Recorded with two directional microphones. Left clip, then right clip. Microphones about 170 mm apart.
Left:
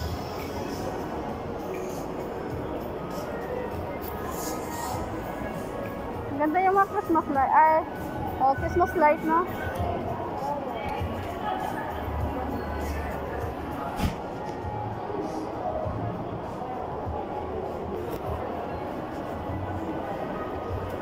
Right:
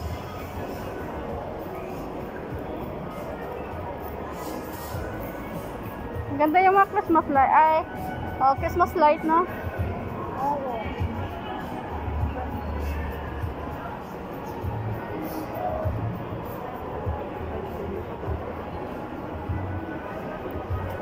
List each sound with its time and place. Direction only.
6.4 s a woman's voice: 10° right (ahead or behind)